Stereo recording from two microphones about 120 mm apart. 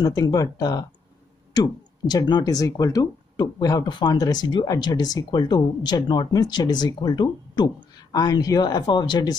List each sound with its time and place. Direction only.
0.0 s speech: 30° left (ahead or behind)